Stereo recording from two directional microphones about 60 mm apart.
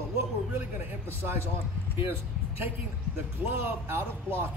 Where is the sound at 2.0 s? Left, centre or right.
Right.